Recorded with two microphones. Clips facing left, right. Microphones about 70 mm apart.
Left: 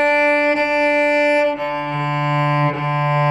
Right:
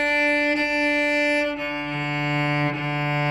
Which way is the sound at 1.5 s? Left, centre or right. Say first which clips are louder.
Left 6 dB; left.